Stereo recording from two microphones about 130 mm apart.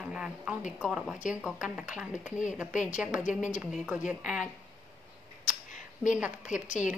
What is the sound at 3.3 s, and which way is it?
Speech, 70° left (ahead or behind).